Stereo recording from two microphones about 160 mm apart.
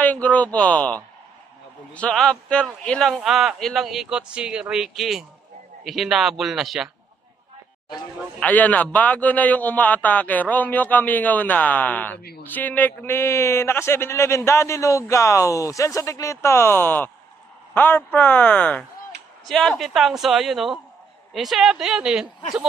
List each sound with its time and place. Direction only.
0.0 s speech: 10° left (ahead or behind)
7.9 s a man's voice: 10° left (ahead or behind)